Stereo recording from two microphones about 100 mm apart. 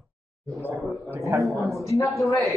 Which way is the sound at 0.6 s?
25° right (ahead or behind).